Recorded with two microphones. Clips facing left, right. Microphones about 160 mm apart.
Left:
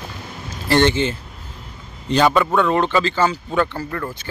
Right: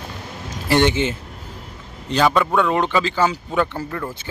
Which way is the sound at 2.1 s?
Centre (ahead or behind).